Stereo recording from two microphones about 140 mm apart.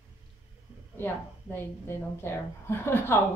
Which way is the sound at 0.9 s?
15° left (ahead or behind).